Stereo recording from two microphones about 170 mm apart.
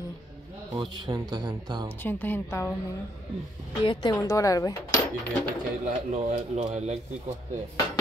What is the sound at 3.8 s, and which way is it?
Speech, 25° left (ahead or behind).